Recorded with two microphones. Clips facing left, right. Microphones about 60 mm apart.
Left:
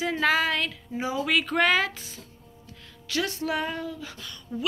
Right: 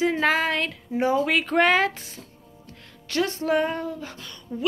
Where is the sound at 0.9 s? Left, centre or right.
Right.